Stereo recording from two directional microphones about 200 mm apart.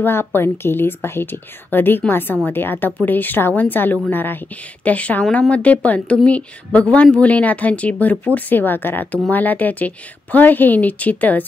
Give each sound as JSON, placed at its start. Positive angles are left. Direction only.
{"t": 0.0, "sound": "a woman's voice", "side_deg": 10}